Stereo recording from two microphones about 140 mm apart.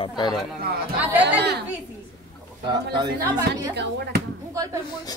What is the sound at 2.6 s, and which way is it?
Speech, 30° right (ahead or behind).